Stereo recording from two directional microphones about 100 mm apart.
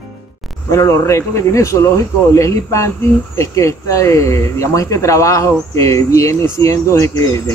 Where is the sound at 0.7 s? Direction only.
30° left (ahead or behind).